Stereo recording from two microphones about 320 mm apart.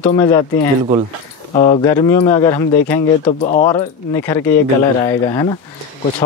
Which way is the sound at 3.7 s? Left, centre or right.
Centre.